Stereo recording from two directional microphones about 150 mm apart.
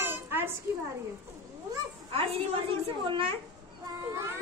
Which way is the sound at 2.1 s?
40° right (ahead or behind).